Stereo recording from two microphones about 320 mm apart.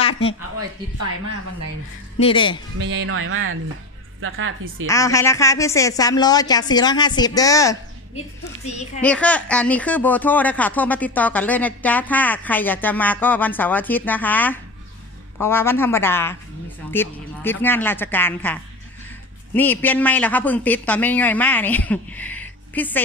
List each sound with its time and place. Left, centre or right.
0.0 s a sound: centre
2.1 s a woman's voice: centre
2.8 s speech: right
4.8 s a woman's voice: centre
8.6 s a child's voice: left
9.0 s a woman's voice: centre